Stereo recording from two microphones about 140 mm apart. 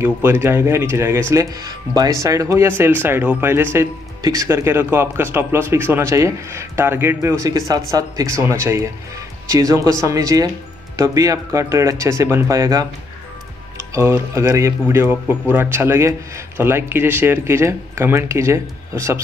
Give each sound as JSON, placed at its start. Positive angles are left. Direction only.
{"t": 0.0, "sound": "speech", "side_deg": -20}
{"t": 13.9, "sound": "speech", "side_deg": -20}